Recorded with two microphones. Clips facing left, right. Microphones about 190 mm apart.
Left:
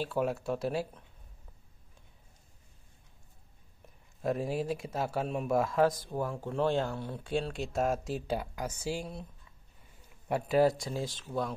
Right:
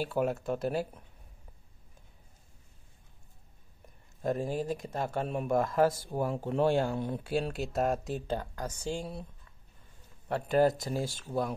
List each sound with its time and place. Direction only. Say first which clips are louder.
0.0 s speech: right 1 dB; centre (ahead or behind)
4.2 s speech: even; centre (ahead or behind); by 7.2 s 15° right (ahead or behind)
7.2 s speech: left 2 dB; 5° right (ahead or behind)
10.2 s speech: even; 5° left (ahead or behind)